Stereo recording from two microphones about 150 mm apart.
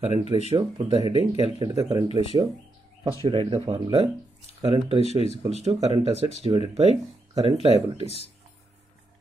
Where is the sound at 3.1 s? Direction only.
35° right (ahead or behind).